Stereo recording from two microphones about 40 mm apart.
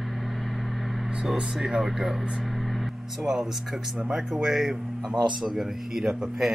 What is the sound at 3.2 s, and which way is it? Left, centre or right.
Speech, centre.